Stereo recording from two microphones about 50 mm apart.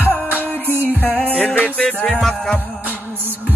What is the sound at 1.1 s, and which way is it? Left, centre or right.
Music, left.